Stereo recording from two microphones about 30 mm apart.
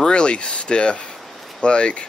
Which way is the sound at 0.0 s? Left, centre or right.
Left.